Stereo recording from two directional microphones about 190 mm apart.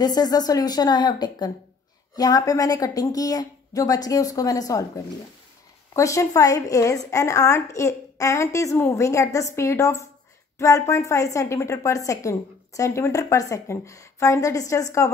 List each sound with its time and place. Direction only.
0.0 s a woman's voice: 20° left (ahead or behind)